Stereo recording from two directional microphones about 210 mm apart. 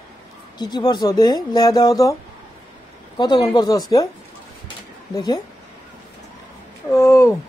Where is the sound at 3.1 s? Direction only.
20° left (ahead or behind).